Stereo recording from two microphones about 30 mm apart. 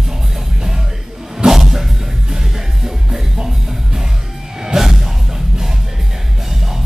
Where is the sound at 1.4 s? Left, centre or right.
Centre.